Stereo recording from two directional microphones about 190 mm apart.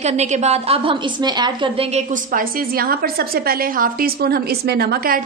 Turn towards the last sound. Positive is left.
turn(degrees=-55)  # may be behind; listen again after turning